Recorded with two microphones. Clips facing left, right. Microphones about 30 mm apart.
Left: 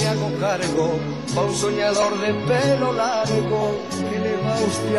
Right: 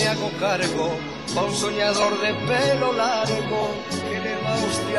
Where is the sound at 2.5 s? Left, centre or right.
Right.